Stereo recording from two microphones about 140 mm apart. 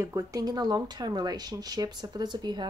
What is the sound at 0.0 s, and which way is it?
A woman's voice, 25° right (ahead or behind).